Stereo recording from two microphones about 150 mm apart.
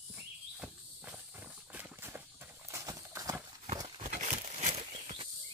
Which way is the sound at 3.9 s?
50° right (ahead or behind).